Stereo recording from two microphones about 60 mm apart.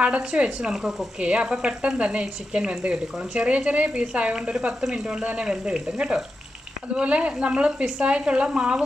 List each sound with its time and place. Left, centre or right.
0.0 s speech: right